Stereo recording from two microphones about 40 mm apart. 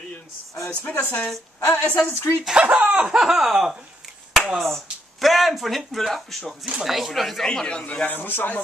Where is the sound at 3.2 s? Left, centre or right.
Centre.